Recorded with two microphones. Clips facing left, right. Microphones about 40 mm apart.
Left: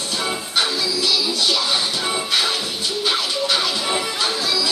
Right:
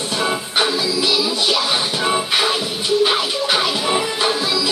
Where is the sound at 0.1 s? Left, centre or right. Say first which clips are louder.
Right 3 dB; centre.